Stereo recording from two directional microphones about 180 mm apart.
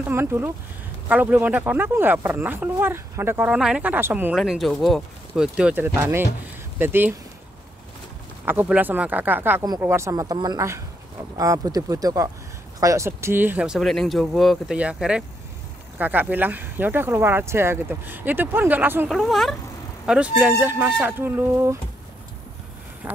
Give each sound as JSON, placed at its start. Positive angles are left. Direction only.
{"t": 0.0, "sound": "speech", "side_deg": -15}
{"t": 8.5, "sound": "a woman's voice", "side_deg": -10}
{"t": 19.0, "sound": "speech", "side_deg": 0}
{"t": 23.0, "sound": "vehicle", "side_deg": -10}